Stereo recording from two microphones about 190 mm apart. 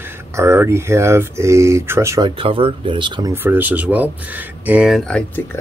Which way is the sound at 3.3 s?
10° right (ahead or behind).